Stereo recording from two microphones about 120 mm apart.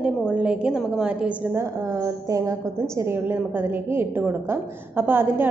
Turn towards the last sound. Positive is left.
turn(degrees=-15)  # may be behind; listen again after turning